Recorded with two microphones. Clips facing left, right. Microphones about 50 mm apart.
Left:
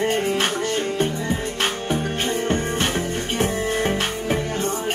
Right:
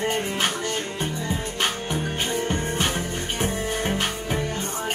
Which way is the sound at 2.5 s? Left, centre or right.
Left.